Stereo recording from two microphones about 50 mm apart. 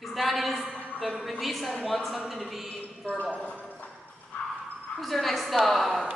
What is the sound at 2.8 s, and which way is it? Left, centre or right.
Speech, left.